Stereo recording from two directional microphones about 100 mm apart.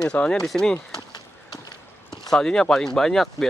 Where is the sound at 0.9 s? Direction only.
45° left (ahead or behind).